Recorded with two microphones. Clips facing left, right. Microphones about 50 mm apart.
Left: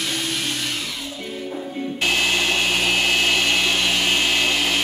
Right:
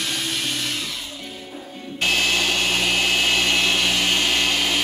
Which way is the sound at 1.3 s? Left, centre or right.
Centre.